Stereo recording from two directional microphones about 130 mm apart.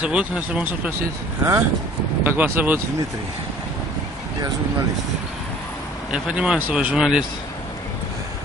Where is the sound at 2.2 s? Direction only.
15° right (ahead or behind).